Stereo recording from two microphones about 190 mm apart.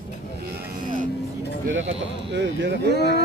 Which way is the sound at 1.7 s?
80° right.